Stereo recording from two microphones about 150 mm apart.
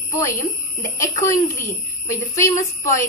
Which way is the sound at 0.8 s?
20° left (ahead or behind).